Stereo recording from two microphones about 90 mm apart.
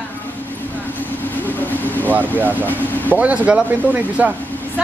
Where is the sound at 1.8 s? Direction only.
20° left (ahead or behind).